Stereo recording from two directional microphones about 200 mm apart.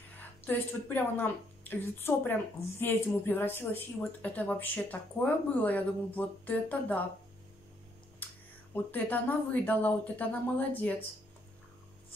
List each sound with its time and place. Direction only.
0.5 s a woman's voice: 10° left (ahead or behind)
8.2 s a sound: 10° left (ahead or behind)
8.9 s a woman's voice: 10° left (ahead or behind)